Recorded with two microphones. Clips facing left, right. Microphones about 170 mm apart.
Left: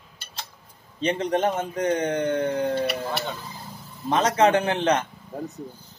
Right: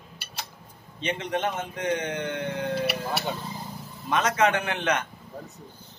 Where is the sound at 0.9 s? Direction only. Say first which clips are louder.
Left 5 dB; 35° left (ahead or behind).